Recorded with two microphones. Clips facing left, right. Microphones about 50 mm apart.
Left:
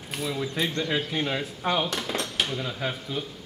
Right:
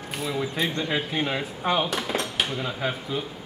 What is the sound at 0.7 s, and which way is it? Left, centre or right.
Speech, centre.